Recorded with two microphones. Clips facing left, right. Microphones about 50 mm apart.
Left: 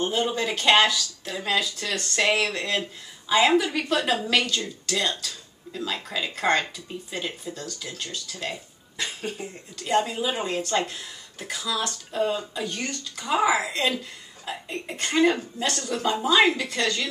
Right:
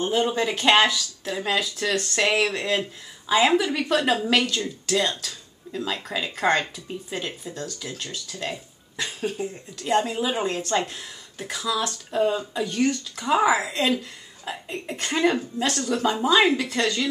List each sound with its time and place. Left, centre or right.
0.0 s speech: centre